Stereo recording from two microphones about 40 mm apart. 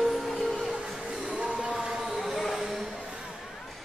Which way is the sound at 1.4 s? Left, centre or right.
Right.